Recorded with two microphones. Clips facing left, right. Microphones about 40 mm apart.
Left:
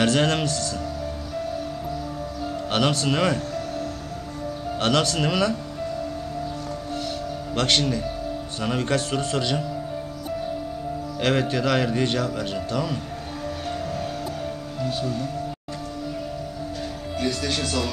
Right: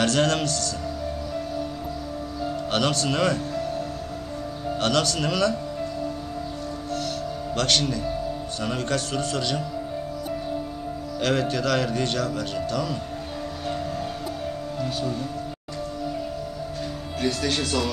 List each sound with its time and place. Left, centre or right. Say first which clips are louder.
0.0 s speech: left 1 dB; left
2.7 s speech: left 2 dB; left
4.7 s speech: left 1 dB; left
7.5 s speech: left 2 dB; left
11.1 s speech: left 1 dB; left
14.8 s music: left 2 dB; centre
17.2 s speech: right 1 dB; centre